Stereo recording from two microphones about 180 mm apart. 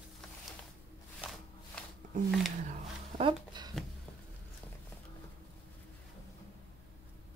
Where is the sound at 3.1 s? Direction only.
25° right (ahead or behind).